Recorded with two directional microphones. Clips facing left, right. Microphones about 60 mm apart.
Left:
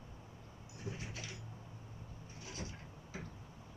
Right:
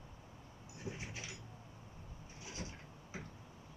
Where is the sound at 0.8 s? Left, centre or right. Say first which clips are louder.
Even; centre.